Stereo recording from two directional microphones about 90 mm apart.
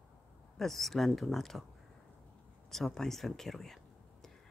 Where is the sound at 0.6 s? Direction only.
Centre (ahead or behind).